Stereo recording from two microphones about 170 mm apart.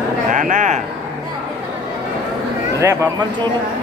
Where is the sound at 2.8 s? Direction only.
15° right (ahead or behind).